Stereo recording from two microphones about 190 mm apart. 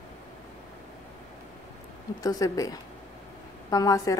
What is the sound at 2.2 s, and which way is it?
A woman's voice, 20° left (ahead or behind).